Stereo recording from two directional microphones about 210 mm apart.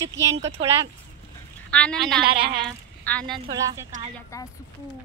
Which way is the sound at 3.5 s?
15° right (ahead or behind).